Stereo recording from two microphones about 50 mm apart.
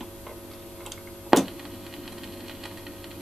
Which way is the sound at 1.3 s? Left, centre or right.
Centre.